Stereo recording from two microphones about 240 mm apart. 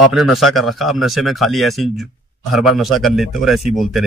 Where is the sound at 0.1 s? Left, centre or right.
Centre.